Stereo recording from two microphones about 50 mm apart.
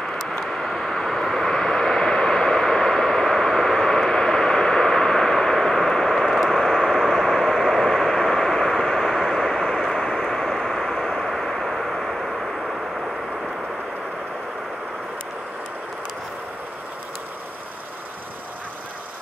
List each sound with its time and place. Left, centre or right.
0.0 s vehicle: centre